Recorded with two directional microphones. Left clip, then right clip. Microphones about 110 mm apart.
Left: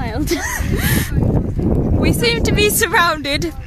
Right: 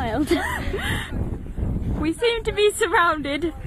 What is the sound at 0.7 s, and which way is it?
Speech, 20° left (ahead or behind).